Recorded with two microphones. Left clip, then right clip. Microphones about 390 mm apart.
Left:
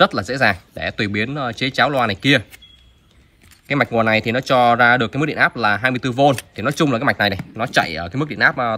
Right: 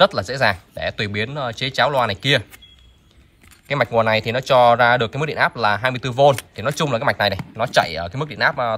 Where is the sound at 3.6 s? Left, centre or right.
Centre.